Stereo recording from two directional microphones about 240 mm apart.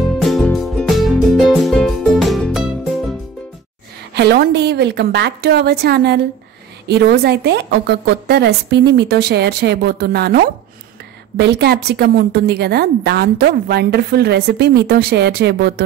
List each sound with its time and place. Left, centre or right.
0.2 s music: centre
4.1 s a woman's voice: right